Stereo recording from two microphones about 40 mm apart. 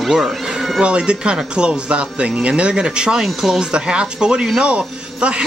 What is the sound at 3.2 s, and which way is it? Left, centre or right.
Speech, centre.